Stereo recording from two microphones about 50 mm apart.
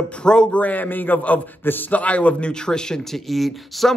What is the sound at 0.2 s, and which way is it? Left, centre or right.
Speech, centre.